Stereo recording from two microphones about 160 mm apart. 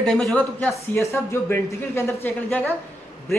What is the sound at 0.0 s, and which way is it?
Speech, 5° left (ahead or behind).